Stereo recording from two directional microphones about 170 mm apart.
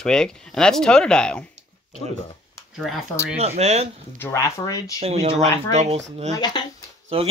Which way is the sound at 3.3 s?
40° right (ahead or behind).